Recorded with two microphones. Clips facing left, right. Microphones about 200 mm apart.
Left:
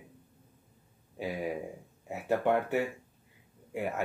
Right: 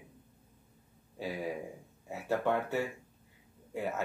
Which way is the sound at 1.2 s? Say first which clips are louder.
Left 2 dB; 15° left (ahead or behind).